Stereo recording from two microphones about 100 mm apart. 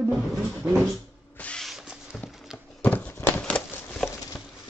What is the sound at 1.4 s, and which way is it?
Drill, 10° left (ahead or behind).